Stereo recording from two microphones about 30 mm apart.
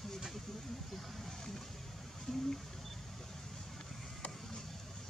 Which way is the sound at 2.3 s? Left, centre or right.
Left.